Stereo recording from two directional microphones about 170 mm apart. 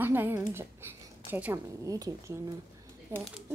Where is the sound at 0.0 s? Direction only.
10° right (ahead or behind).